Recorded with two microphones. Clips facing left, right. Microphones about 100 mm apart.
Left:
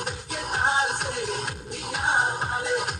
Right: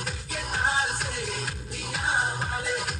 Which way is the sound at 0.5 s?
25° left (ahead or behind).